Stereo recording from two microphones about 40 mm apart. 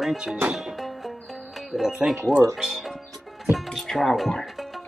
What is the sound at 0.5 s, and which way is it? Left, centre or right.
Music, centre.